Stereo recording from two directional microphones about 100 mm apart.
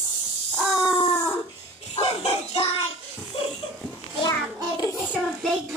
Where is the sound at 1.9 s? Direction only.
90° left.